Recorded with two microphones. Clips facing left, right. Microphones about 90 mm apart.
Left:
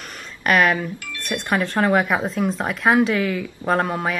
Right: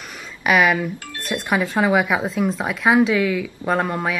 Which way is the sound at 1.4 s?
5° right (ahead or behind).